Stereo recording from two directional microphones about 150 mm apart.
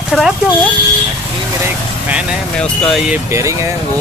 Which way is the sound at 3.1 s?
20° right (ahead or behind).